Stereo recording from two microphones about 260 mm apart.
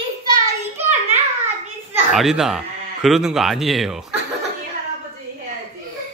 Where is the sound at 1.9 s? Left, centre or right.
Centre.